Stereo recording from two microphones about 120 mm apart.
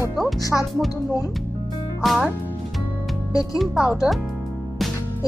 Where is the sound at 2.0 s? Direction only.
5° right (ahead or behind).